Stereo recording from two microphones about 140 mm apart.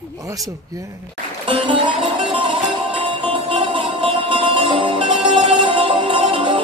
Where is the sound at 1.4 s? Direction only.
40° right (ahead or behind).